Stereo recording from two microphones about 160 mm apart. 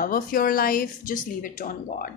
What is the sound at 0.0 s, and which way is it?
A woman's voice, 60° left (ahead or behind).